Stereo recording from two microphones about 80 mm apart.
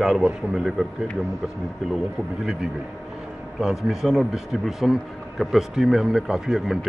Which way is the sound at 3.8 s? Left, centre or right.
Centre.